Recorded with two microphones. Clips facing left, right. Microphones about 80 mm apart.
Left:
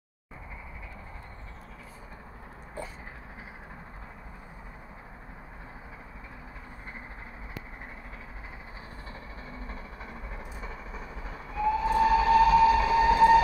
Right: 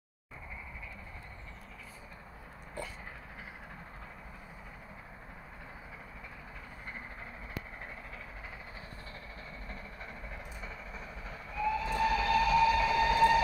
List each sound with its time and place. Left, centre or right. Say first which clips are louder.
9.5 s train: left 5 dB; centre